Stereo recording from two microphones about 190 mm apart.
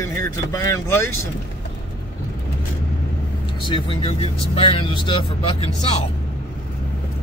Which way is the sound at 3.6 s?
25° left (ahead or behind).